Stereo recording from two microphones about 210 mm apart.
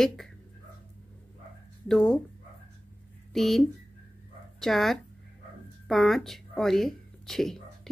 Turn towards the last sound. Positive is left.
turn(degrees=0)  # may be behind; listen again after turning